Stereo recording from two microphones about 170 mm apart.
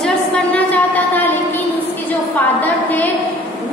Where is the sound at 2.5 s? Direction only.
10° left (ahead or behind).